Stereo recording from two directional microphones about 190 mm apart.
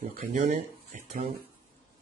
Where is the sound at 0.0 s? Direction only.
45° right (ahead or behind).